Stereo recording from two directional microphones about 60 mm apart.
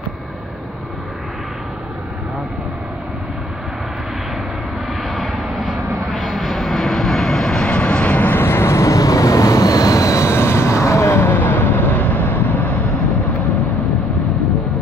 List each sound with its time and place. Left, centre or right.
5.3 s vehicle: right
6.2 s vehicle: centre; by 8.7 s left
8.7 s vehicle: left